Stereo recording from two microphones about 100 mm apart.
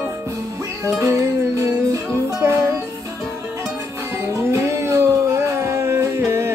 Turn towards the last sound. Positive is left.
turn(degrees=-25)  # may be behind; listen again after turning